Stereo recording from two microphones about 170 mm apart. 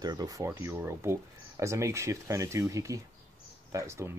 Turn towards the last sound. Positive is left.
turn(degrees=-15)  # may be behind; listen again after turning